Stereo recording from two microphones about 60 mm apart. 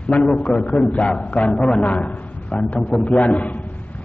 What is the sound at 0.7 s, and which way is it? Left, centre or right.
A man's voice, left.